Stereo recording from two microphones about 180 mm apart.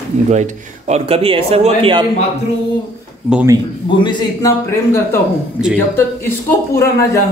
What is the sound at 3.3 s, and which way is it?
Speech, 15° right (ahead or behind).